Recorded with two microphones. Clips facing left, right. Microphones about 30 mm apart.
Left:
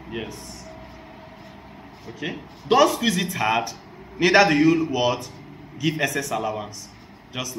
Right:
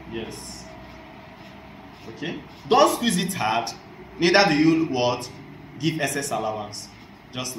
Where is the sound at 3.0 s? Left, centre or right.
Left.